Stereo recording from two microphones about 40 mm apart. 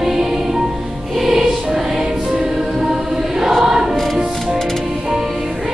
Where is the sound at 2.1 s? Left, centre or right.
Centre.